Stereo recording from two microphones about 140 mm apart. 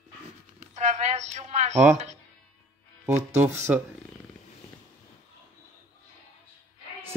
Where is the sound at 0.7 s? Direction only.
55° right (ahead or behind).